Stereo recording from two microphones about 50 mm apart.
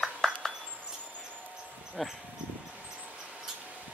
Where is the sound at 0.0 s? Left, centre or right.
Centre.